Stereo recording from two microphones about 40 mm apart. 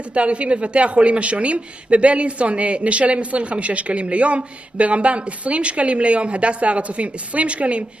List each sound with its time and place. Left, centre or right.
0.1 s a woman's voice: right